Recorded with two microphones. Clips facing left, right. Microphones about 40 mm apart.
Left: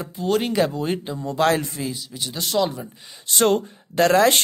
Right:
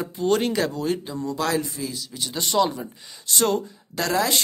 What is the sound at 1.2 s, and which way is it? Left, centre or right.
Speech, left.